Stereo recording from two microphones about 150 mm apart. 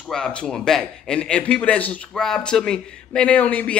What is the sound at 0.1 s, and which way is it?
A man's voice, 5° left (ahead or behind).